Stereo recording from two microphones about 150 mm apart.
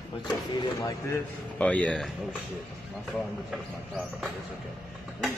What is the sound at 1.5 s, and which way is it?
Speech, 10° left (ahead or behind).